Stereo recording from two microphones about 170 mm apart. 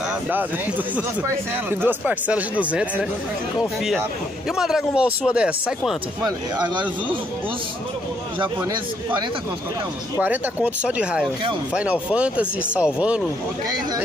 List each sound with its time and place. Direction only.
1.7 s speech: 10° right (ahead or behind)
4.5 s speech: 5° right (ahead or behind)
6.2 s speech: 25° right (ahead or behind)
10.2 s speech: 10° right (ahead or behind)